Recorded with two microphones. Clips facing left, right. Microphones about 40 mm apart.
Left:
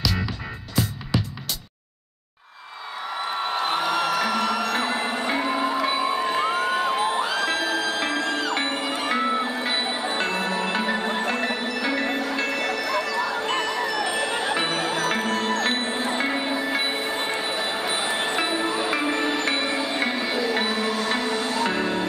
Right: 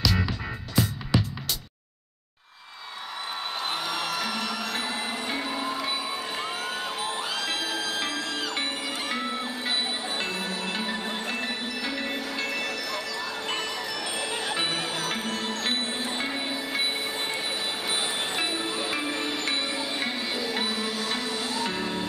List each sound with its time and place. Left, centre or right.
0.0 s music: centre
3.3 s music: centre
10.2 s music: left
15.9 s music: left